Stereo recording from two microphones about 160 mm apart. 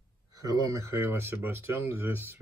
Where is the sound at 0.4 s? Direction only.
20° right (ahead or behind).